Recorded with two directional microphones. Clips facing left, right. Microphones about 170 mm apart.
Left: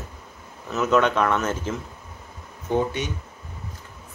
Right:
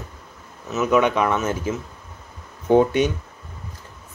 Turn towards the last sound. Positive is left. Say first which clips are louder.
# right 8 dB
turn(degrees=-65)  # may be behind; listen again after turning